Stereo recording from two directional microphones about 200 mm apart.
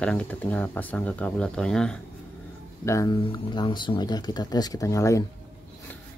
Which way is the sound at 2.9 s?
20° left (ahead or behind).